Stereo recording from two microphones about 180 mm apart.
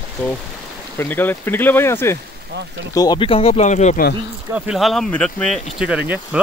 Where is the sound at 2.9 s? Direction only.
25° left (ahead or behind).